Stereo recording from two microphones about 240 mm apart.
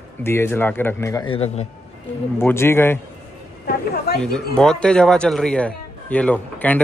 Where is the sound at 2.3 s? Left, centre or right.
Centre.